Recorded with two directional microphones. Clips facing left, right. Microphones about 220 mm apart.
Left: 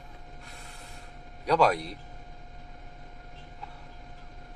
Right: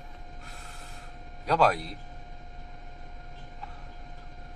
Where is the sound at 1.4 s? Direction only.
Centre (ahead or behind).